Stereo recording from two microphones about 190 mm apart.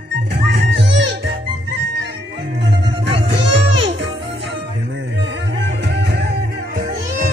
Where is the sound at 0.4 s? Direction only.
60° right (ahead or behind).